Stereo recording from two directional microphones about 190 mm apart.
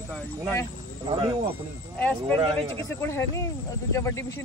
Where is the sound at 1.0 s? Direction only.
25° right (ahead or behind).